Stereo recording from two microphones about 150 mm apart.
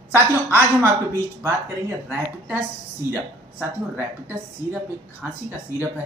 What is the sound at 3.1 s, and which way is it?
A woman's voice, 10° right (ahead or behind).